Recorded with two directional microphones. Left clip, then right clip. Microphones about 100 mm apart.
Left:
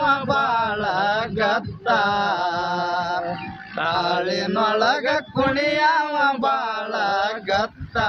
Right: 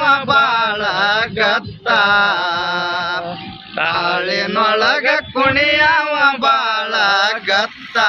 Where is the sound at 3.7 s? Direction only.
10° left (ahead or behind).